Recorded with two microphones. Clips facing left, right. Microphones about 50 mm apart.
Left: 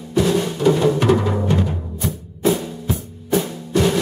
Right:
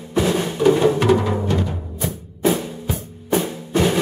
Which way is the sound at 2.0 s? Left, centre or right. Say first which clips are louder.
Right 2 dB; centre.